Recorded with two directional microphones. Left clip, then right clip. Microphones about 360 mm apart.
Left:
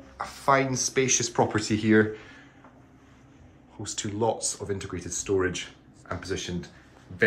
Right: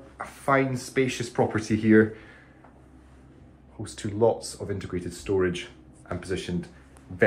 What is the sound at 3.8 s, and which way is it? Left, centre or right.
Speech, centre.